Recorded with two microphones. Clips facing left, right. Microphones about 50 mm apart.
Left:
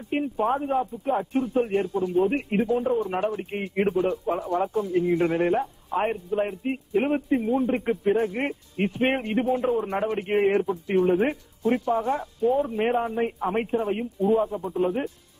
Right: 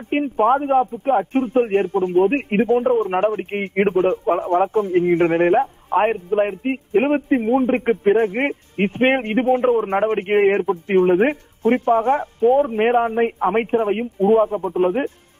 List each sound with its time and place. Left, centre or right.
0.1 s a man's voice: right